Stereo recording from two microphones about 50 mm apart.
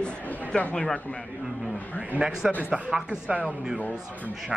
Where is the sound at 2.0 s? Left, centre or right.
Centre.